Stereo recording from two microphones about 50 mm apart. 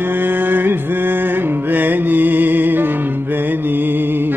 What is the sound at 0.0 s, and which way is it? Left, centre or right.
Music, right.